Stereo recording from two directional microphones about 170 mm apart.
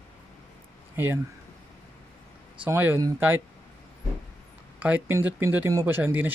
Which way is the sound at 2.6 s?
10° right (ahead or behind).